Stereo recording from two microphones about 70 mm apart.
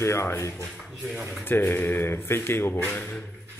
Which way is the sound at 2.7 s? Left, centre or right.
Left.